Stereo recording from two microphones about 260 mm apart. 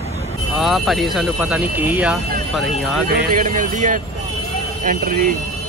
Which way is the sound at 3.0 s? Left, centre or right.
Right.